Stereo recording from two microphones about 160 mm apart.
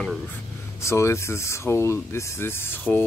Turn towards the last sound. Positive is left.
turn(degrees=15)  # may be behind; listen again after turning